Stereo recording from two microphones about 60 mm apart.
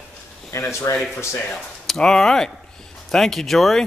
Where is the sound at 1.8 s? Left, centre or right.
Centre.